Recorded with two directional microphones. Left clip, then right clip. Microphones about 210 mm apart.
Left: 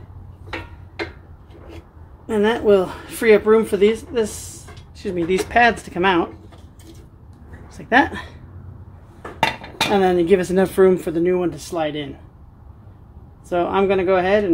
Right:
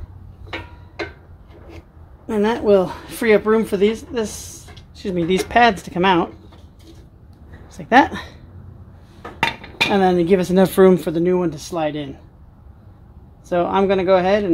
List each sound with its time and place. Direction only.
2.2 s speech: 30° right (ahead or behind)
7.6 s a woman's voice: 40° right (ahead or behind)
9.4 s dishes: 5° left (ahead or behind)
9.9 s speech: 30° right (ahead or behind)
13.5 s speech: 30° right (ahead or behind)